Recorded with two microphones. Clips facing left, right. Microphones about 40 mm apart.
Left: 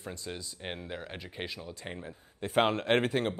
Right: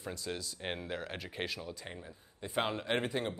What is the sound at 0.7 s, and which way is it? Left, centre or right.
Speech, centre.